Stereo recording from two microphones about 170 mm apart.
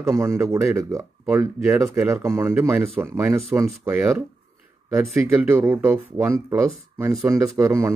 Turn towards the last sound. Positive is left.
turn(degrees=-15)  # may be behind; listen again after turning